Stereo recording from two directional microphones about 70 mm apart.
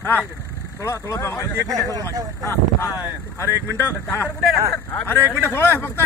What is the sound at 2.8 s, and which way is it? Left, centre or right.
Speech, left.